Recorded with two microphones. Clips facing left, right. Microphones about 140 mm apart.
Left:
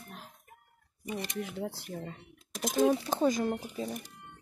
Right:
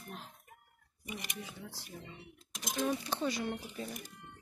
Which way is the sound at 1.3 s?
70° left (ahead or behind).